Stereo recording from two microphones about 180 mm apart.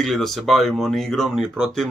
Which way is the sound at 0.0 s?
Centre (ahead or behind).